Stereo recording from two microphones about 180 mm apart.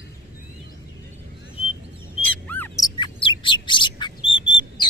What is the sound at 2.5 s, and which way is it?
Bird, 15° left (ahead or behind).